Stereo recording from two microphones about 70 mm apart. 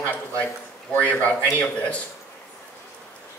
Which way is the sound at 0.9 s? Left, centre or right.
Centre.